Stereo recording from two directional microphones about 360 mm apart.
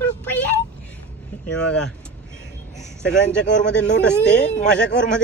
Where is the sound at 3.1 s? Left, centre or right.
Left.